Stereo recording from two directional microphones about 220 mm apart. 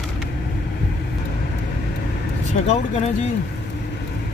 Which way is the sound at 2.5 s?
30° left (ahead or behind).